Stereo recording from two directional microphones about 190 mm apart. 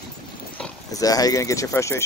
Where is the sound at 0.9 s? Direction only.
20° left (ahead or behind).